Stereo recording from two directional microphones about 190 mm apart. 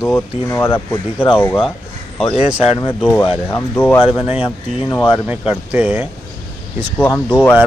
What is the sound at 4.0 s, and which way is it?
Speech, 30° left (ahead or behind).